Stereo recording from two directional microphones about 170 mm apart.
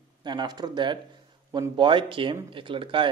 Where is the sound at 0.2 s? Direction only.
25° right (ahead or behind).